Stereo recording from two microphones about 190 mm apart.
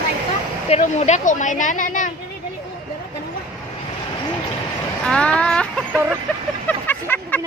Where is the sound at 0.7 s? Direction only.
35° left (ahead or behind).